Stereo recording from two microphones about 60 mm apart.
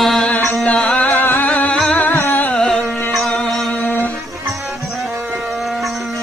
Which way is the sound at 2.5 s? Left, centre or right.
Centre.